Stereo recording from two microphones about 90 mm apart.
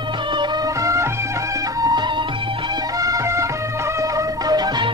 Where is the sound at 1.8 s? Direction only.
50° right (ahead or behind).